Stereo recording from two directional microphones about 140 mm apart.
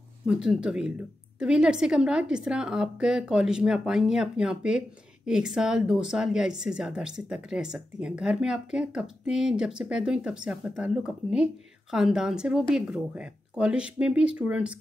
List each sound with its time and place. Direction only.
0.3 s a woman's voice: 5° right (ahead or behind)